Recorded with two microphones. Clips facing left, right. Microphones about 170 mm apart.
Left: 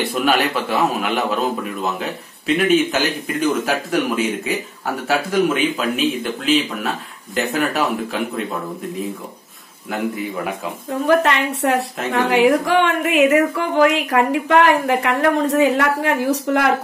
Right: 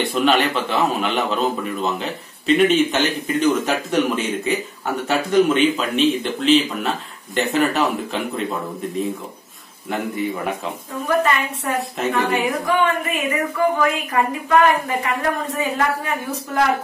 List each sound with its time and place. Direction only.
0.1 s a man's voice: 5° left (ahead or behind)
9.8 s a man's voice: 5° left (ahead or behind)
11.1 s a woman's voice: 75° left (ahead or behind)